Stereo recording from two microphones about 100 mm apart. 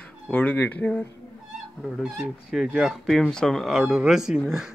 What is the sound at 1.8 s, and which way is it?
Speech, 5° right (ahead or behind).